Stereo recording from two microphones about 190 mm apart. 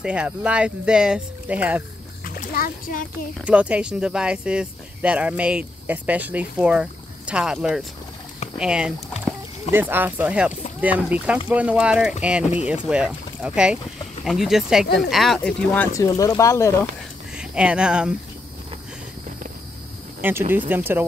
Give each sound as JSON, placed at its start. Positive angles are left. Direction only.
{"t": 0.0, "sound": "speech", "side_deg": -5}
{"t": 2.2, "sound": "a child's voice", "side_deg": 50}
{"t": 3.3, "sound": "speech", "side_deg": -5}
{"t": 17.4, "sound": "speech", "side_deg": -5}
{"t": 20.2, "sound": "speech", "side_deg": -10}